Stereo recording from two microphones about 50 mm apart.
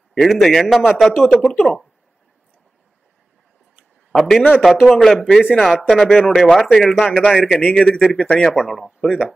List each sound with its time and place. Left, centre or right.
0.2 s speech: centre
1.6 s a man's voice: centre
4.1 s a man's voice: centre
4.6 s a man's voice: centre
9.0 s a man's voice: centre